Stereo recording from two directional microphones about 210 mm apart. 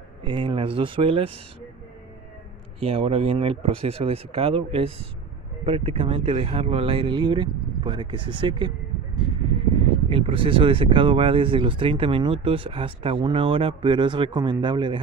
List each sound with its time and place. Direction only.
0.2 s speech: 25° right (ahead or behind)
2.8 s speech: 30° right (ahead or behind)
10.0 s speech: 25° right (ahead or behind)